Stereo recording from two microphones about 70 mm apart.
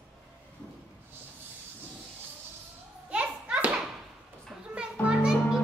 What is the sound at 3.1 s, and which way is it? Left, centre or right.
Children playing, centre.